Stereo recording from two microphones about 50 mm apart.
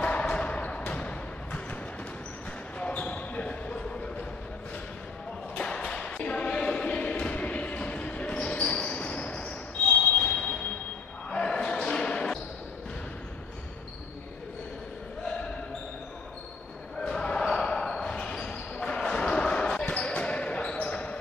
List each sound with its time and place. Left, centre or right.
0.0 s a sound: left
0.4 s music: left
2.8 s basketball bounce: left
5.6 s choir: centre
9.9 s basketball bounce: left
17.0 s basketball bounce: centre